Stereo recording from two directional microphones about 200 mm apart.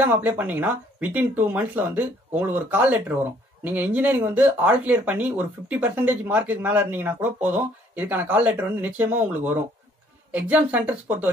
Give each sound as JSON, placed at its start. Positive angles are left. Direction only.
{"t": 0.0, "sound": "speech", "side_deg": -10}